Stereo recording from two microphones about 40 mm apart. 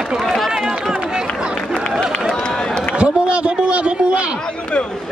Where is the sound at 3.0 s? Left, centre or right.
Right.